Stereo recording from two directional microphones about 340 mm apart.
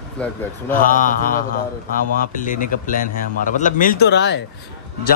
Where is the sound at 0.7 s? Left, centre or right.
Left.